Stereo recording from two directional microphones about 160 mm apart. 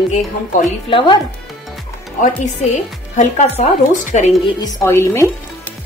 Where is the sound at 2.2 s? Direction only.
50° left (ahead or behind).